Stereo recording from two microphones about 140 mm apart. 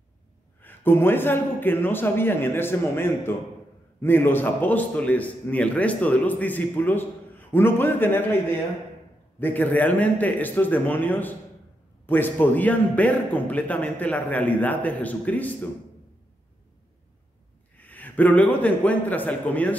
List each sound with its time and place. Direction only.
0.6 s a man's voice: 15° left (ahead or behind)
9.4 s a man's voice: 15° left (ahead or behind)
17.7 s a man's voice: 10° left (ahead or behind)